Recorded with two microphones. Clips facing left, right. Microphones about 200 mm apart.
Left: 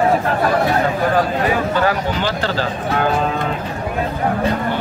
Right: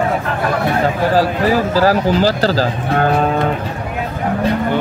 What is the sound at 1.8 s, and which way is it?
Speech, 35° right (ahead or behind).